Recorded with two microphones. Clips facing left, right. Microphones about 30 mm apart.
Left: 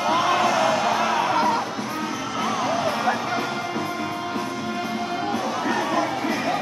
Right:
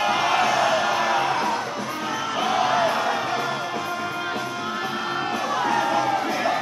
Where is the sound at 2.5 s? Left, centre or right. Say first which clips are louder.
Right 4 dB; right.